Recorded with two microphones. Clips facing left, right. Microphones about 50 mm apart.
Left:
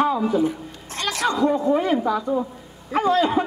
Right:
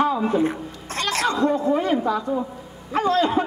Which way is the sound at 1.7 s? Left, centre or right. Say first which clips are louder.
Left 1 dB; centre.